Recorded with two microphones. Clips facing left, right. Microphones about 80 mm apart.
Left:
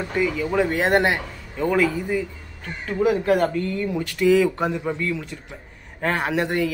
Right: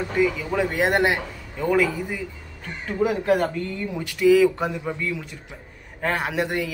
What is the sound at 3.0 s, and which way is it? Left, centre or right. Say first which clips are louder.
Speech: left 2 dB; centre.